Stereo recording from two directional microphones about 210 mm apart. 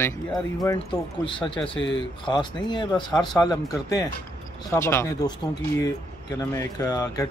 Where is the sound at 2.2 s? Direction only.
20° left (ahead or behind).